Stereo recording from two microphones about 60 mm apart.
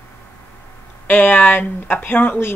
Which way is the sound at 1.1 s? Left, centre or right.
Left.